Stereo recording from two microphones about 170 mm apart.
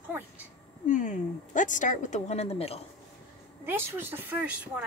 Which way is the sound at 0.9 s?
50° left (ahead or behind).